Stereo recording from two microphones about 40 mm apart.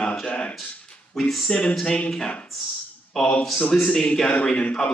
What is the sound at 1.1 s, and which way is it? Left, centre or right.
Speech, centre.